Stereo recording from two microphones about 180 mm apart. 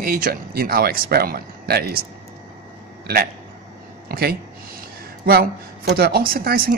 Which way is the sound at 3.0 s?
60° right (ahead or behind).